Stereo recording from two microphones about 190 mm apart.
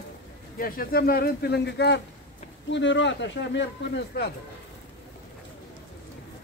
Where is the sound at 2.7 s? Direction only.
75° left (ahead or behind).